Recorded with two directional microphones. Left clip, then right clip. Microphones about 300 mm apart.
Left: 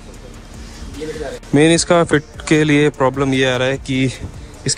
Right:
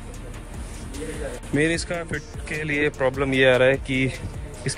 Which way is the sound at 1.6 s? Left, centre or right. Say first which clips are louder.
Left 12 dB; centre.